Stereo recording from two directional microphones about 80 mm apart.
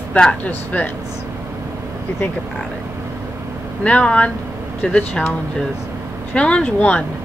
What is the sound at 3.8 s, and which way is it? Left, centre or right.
Speech, centre.